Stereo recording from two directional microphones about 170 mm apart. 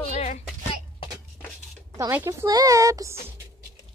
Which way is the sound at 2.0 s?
15° right (ahead or behind).